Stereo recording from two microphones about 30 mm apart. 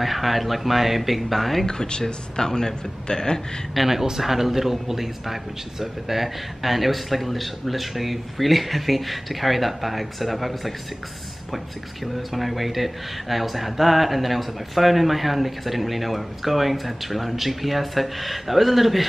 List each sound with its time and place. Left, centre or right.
0.0 s speech: centre
1.7 s speech: left
3.7 s speech: centre
12.3 s speech: centre